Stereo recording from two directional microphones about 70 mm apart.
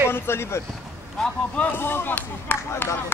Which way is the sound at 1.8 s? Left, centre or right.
Left.